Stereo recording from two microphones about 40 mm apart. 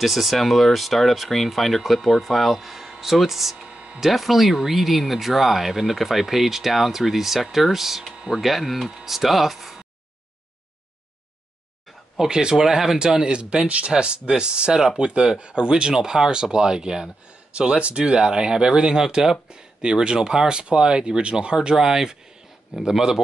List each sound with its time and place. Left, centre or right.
0.0 s speech: centre
3.5 s a sound: centre
4.0 s speech: centre
12.2 s speech: centre
12.6 s speech: centre
13.0 s speech: right